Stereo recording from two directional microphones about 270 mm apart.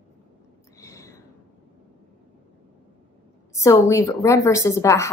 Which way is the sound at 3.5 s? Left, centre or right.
Centre.